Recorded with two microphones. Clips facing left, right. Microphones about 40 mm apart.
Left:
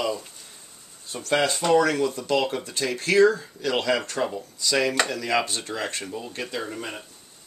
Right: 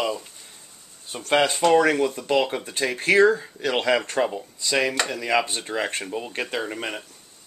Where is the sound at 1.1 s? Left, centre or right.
Right.